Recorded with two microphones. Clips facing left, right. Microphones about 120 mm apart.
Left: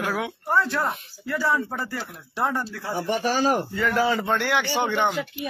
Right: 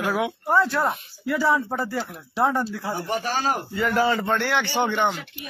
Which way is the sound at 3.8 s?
5° right (ahead or behind).